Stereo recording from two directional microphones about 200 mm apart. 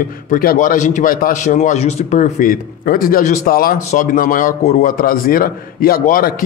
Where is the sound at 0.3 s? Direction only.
45° left (ahead or behind).